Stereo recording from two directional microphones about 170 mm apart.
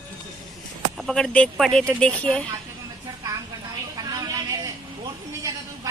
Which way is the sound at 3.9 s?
25° right (ahead or behind).